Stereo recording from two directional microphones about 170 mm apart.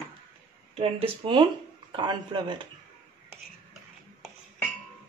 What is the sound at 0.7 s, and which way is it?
Speech, 35° right (ahead or behind).